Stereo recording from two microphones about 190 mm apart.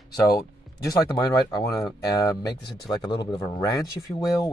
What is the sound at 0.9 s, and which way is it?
Speech, 20° left (ahead or behind).